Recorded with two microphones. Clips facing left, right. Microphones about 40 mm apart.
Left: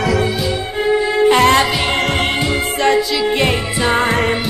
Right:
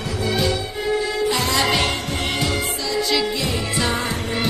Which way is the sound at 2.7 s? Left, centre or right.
Left.